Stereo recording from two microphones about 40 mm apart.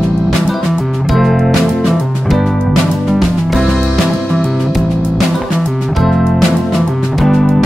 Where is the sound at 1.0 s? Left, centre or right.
Centre.